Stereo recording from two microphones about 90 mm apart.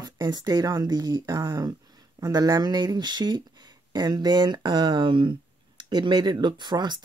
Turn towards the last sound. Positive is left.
turn(degrees=-55)  # may be behind; listen again after turning